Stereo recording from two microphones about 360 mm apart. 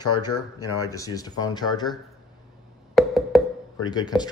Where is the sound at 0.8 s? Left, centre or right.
Centre.